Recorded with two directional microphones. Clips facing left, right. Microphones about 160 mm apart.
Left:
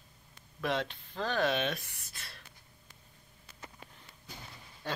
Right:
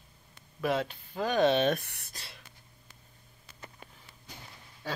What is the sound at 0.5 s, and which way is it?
Speech, 5° right (ahead or behind).